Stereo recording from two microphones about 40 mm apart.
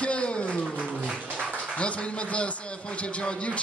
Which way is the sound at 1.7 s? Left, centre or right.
Left.